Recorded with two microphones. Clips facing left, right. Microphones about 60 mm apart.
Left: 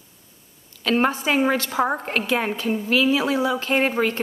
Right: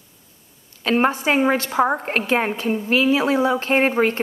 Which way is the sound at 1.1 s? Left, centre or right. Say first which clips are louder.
Right 2 dB; right.